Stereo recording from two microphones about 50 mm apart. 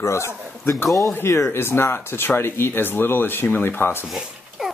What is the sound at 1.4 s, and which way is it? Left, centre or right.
Speech, left.